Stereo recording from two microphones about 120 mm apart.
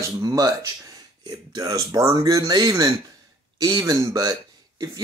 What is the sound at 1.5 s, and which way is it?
Speech, 30° right (ahead or behind).